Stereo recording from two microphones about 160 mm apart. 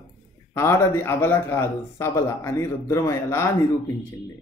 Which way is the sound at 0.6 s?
15° left (ahead or behind).